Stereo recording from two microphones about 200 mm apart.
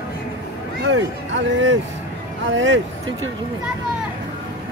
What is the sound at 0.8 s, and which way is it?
Speech, 70° right (ahead or behind).